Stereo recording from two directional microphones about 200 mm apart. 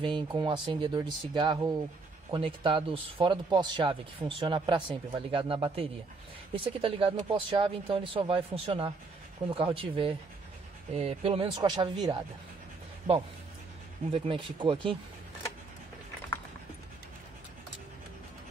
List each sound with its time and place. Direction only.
0.0 s speech: 25° right (ahead or behind)
14.1 s speech: 25° right (ahead or behind)